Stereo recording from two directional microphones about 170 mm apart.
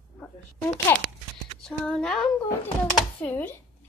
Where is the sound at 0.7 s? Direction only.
25° left (ahead or behind).